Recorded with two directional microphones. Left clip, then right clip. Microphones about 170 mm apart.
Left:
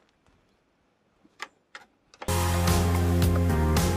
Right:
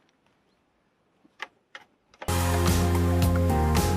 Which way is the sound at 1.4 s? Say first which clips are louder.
Right 1 dB; 10° left (ahead or behind).